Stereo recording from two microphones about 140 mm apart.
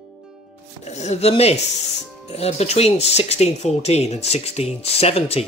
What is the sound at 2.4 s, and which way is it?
Speech, 50° left (ahead or behind).